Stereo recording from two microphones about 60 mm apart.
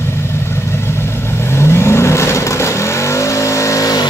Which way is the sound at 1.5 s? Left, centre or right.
Left.